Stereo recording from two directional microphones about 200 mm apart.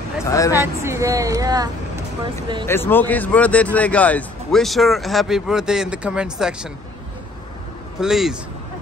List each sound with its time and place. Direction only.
0.2 s speech: 15° left (ahead or behind)
0.6 s a woman's voice: 15° right (ahead or behind)
2.6 s speech: 10° left (ahead or behind)
8.0 s speech: 5° right (ahead or behind)